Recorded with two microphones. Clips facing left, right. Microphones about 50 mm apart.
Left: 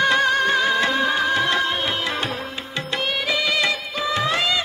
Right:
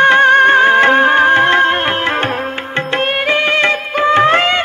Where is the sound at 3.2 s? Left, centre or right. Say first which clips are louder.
Right 8 dB; right.